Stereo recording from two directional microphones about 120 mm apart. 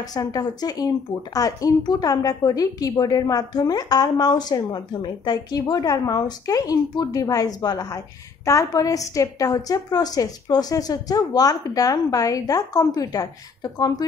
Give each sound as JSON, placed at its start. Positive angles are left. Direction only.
{"t": 0.0, "sound": "speech", "side_deg": 30}